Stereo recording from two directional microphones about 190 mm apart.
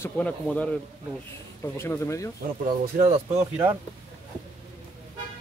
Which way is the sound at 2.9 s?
35° right (ahead or behind).